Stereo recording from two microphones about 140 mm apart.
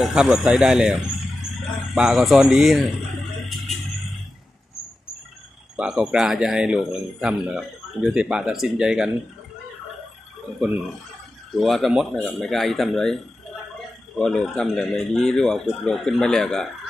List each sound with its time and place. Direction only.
0.0 s speech: 5° right (ahead or behind)
5.8 s speech: 5° right (ahead or behind)
11.6 s speech: centre (ahead or behind)